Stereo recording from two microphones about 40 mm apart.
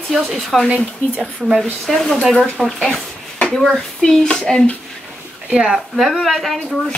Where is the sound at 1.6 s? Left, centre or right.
Centre.